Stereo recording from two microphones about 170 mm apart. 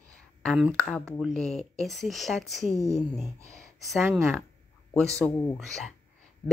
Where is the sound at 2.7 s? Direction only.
20° right (ahead or behind).